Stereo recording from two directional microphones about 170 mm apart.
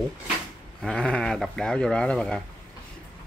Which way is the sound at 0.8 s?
5° left (ahead or behind).